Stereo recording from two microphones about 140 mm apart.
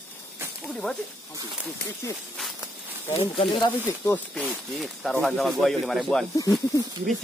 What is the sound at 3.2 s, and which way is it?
Speech, 40° left (ahead or behind).